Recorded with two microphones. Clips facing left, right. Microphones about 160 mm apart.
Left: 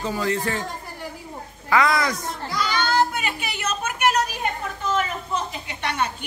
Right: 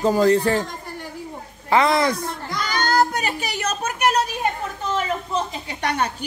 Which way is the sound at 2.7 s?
45° right (ahead or behind).